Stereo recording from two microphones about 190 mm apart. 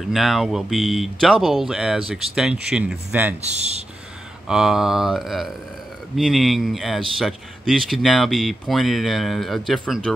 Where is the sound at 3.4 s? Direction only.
35° right (ahead or behind).